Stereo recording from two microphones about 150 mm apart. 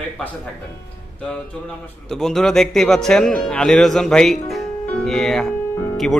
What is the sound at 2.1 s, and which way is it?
Speech, 5° left (ahead or behind).